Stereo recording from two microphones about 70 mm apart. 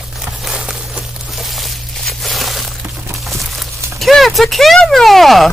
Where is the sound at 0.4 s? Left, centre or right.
Centre.